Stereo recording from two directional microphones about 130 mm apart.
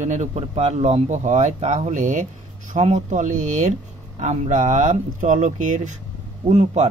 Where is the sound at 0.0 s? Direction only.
65° right (ahead or behind).